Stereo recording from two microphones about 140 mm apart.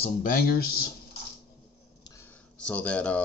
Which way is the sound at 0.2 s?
80° left.